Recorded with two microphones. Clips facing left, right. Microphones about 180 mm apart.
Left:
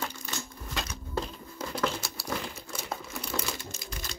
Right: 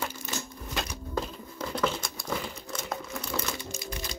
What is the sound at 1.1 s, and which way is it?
Crumpling, 10° left (ahead or behind).